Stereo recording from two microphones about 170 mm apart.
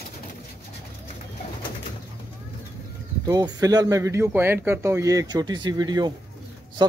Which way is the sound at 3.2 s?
20° right (ahead or behind).